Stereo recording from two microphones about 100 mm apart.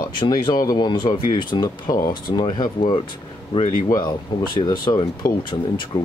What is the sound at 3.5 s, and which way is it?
Speech, 70° left (ahead or behind).